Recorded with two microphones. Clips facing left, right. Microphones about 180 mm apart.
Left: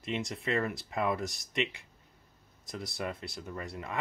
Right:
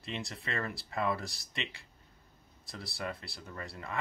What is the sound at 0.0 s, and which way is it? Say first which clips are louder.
Speech: left 6 dB; 20° left (ahead or behind).